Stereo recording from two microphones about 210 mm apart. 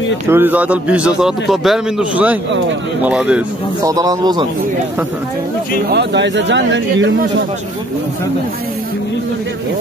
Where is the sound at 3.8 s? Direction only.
15° right (ahead or behind).